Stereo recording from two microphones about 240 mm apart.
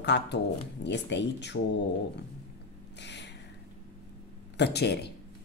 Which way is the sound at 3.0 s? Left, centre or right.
Left.